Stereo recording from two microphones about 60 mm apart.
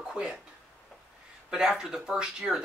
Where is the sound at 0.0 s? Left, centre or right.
Centre.